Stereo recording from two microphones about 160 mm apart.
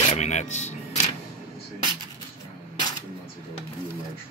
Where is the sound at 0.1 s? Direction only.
45° left (ahead or behind).